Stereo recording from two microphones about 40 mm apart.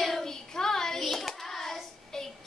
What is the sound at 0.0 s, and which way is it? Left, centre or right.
Child singing, centre.